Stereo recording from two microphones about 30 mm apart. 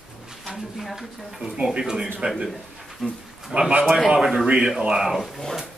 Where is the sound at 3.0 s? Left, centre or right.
Left.